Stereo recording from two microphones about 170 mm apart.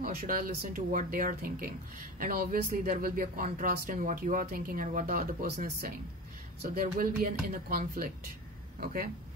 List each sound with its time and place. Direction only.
0.0 s speech: 55° right (ahead or behind)